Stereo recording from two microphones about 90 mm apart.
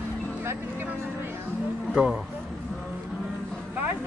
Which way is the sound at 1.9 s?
10° right (ahead or behind).